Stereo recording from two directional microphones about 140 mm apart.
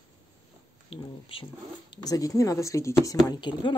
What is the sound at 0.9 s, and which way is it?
Speech, 40° left (ahead or behind).